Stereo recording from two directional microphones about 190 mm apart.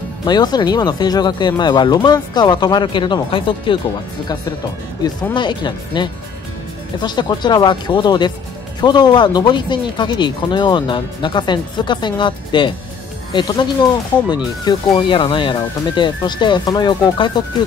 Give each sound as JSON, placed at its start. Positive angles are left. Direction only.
{"t": 0.2, "sound": "speech", "side_deg": 20}
{"t": 5.0, "sound": "speech", "side_deg": 25}